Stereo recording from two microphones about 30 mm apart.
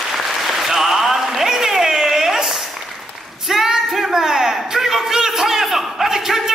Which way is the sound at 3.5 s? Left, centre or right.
Centre.